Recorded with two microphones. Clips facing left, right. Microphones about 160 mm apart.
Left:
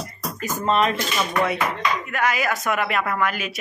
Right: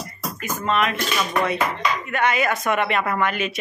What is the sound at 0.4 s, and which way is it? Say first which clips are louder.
Speech: left 2 dB; 35° left (ahead or behind).